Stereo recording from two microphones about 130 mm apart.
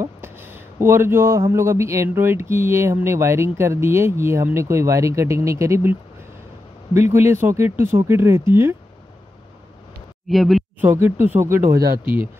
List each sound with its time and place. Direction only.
0.0 s a sound: 20° right (ahead or behind)
1.5 s speech: 20° right (ahead or behind)
10.2 s speech: centre (ahead or behind)
10.8 s speech: 15° right (ahead or behind)